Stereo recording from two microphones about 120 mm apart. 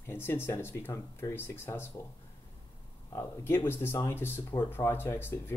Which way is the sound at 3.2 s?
20° left (ahead or behind).